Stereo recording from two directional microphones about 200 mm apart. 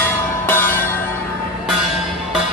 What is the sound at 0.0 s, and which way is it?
Music, 10° left (ahead or behind).